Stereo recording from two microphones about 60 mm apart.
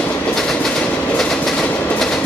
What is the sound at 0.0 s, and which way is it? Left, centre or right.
Train, centre.